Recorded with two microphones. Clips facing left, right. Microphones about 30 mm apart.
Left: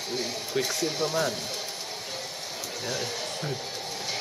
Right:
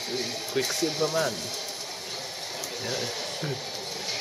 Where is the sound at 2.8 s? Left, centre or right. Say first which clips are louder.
Even; centre.